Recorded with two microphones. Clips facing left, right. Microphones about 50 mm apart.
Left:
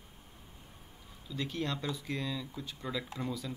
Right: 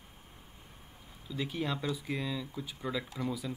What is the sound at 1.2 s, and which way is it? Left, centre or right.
Speech, centre.